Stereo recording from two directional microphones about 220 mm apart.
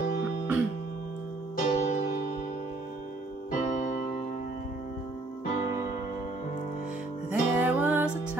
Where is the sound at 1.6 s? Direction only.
30° left (ahead or behind).